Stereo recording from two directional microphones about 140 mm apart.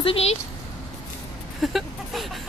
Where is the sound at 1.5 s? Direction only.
Centre (ahead or behind).